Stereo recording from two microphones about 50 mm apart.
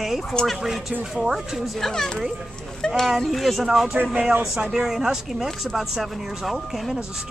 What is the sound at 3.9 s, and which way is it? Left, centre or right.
Speech, right.